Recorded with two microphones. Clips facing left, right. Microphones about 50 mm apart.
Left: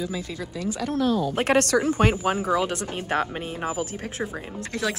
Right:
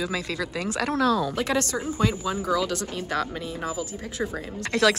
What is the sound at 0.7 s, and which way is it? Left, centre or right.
Speech, right.